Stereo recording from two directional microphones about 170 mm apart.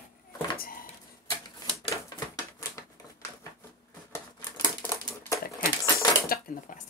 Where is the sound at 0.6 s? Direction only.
60° left (ahead or behind).